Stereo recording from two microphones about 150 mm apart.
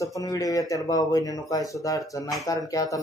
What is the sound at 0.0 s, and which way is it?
Speech, 20° left (ahead or behind).